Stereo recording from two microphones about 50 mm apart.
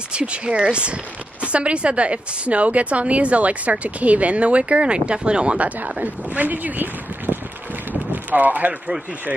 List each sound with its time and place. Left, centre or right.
0.1 s a woman's voice: right